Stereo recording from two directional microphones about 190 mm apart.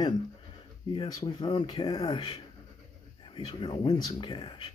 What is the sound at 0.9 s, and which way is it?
Speech, 25° left (ahead or behind).